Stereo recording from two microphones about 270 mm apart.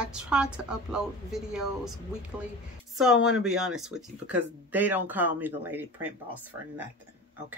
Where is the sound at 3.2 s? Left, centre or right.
Centre.